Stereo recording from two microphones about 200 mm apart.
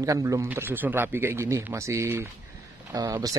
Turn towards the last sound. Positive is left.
turn(degrees=-20)  # may be behind; listen again after turning